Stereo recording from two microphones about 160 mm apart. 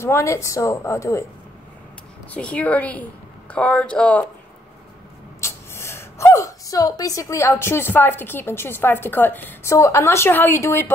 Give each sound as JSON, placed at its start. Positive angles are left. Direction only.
{"t": 0.0, "sound": "a woman's voice", "side_deg": 15}
{"t": 2.3, "sound": "a woman's voice", "side_deg": 10}
{"t": 5.4, "sound": "a woman's voice", "side_deg": 15}